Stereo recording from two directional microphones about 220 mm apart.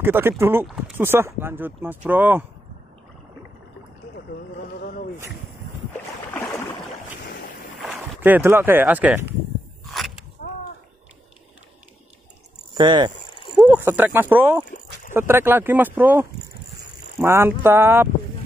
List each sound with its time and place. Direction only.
0.0 s speech: 10° right (ahead or behind)
4.8 s speech: 40° left (ahead or behind)
6.3 s boat: 10° left (ahead or behind)
7.8 s speech: 10° right (ahead or behind)
9.8 s a sound: centre (ahead or behind)
12.7 s speech: 20° right (ahead or behind)